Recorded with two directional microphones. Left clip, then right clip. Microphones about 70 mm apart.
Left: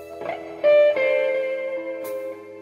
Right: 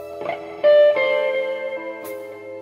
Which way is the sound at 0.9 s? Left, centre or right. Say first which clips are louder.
Right 2 dB; left.